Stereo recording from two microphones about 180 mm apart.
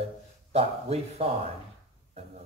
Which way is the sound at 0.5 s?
35° right (ahead or behind).